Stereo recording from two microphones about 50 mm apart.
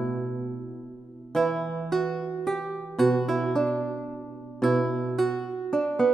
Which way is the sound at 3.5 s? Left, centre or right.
Centre.